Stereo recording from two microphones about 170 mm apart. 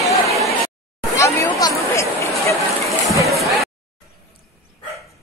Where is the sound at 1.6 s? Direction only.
15° left (ahead or behind).